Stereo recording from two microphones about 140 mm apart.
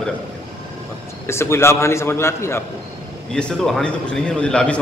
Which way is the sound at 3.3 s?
5° left (ahead or behind).